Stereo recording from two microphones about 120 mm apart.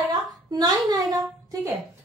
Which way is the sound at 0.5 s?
35° right (ahead or behind).